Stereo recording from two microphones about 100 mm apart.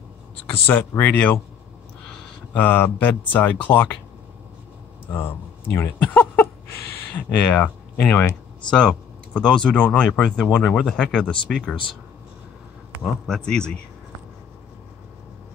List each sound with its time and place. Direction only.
0.5 s speech: 20° left (ahead or behind)
2.5 s speech: 20° left (ahead or behind)
5.1 s speech: 25° left (ahead or behind)
13.3 s speech: 10° left (ahead or behind)